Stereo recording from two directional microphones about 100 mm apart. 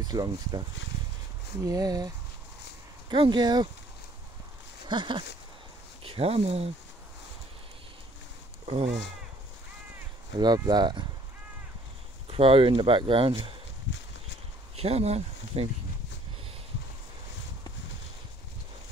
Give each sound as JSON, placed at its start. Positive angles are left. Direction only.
{"t": 0.0, "sound": "speech", "side_deg": -40}
{"t": 3.1, "sound": "speech", "side_deg": -50}
{"t": 4.8, "sound": "speech", "side_deg": -50}
{"t": 6.0, "sound": "speech", "side_deg": -75}
{"t": 8.6, "sound": "speech", "side_deg": -90}
{"t": 10.4, "sound": "speech", "side_deg": -45}
{"t": 12.3, "sound": "speech", "side_deg": -70}
{"t": 14.8, "sound": "speech", "side_deg": -90}